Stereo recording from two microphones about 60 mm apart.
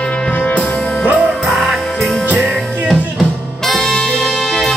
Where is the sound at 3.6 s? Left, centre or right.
Centre.